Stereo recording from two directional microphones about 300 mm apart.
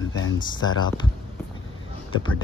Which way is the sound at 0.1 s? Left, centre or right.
Left.